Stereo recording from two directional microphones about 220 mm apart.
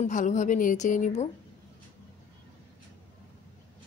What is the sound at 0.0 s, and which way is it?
A woman's voice, 35° left (ahead or behind).